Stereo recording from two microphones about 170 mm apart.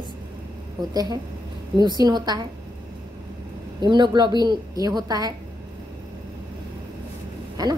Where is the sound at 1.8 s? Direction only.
25° right (ahead or behind).